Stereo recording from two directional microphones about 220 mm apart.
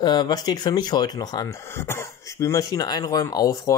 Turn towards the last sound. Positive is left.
turn(degrees=15)  # may be behind; listen again after turning